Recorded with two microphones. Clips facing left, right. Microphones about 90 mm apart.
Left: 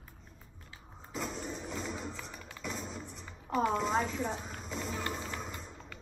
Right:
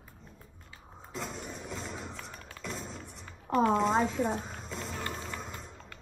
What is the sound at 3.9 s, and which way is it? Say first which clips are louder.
Speech: right 4 dB; 10° right (ahead or behind).